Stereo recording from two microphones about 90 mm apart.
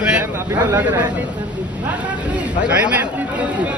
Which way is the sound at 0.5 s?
30° right (ahead or behind).